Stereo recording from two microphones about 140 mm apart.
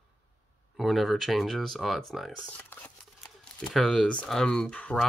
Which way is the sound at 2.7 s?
15° left (ahead or behind).